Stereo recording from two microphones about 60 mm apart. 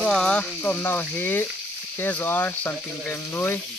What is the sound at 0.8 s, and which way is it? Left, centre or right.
Speech, left.